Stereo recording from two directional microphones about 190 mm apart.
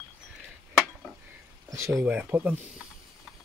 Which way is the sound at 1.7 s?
15° right (ahead or behind).